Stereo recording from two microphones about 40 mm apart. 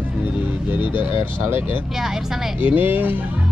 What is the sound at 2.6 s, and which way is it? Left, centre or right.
Speech, right.